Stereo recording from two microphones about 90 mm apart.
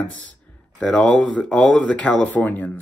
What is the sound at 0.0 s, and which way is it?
Speech, 15° left (ahead or behind).